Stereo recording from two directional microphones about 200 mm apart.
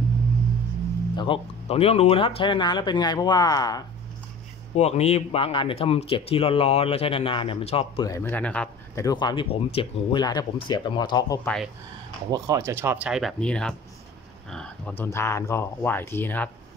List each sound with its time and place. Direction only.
1.1 s speech: 25° left (ahead or behind)
4.7 s speech: 30° left (ahead or behind)
8.1 s a man's voice: 10° left (ahead or behind)
9.0 s speech: 20° left (ahead or behind)
11.4 s speech: centre (ahead or behind)
12.3 s speech: 15° right (ahead or behind); by 16.4 s 10° left (ahead or behind)